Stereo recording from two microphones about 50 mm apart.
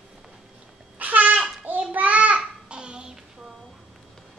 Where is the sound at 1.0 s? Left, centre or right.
Right.